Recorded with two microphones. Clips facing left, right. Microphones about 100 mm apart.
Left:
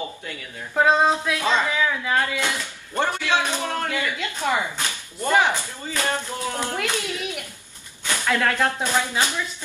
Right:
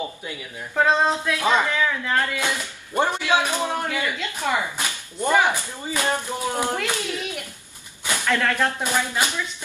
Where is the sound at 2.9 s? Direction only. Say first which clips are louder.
Right 2 dB; 15° right (ahead or behind).